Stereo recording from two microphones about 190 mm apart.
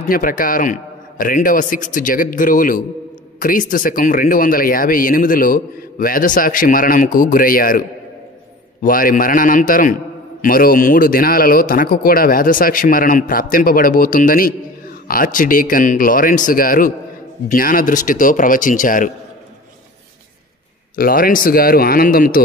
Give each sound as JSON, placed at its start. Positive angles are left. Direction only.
{"t": 0.1, "sound": "a man's voice", "side_deg": 45}
{"t": 8.8, "sound": "speech", "side_deg": 45}
{"t": 20.9, "sound": "speech", "side_deg": 50}